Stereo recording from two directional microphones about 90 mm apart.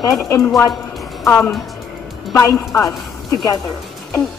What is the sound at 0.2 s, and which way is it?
Speech, 35° left (ahead or behind).